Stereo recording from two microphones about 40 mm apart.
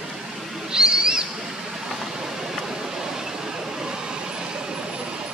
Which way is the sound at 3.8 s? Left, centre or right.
Centre.